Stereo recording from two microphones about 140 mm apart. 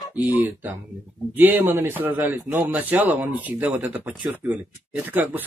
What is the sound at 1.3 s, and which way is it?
Speech, 15° right (ahead or behind).